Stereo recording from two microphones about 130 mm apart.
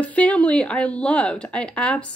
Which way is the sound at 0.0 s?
10° left (ahead or behind).